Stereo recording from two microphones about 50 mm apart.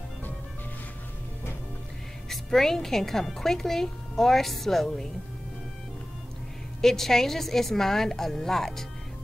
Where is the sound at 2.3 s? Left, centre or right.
Centre.